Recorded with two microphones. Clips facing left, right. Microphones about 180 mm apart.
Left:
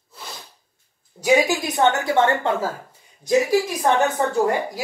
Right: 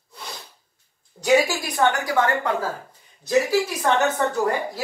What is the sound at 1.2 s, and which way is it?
A woman's voice, 15° left (ahead or behind).